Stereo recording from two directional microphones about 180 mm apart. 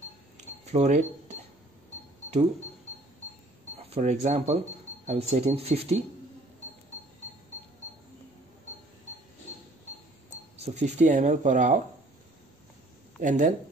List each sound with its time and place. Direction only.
0.7 s speech: 40° right (ahead or behind)
3.9 s speech: 40° right (ahead or behind)
10.6 s speech: 40° right (ahead or behind)
13.2 s speech: 45° right (ahead or behind)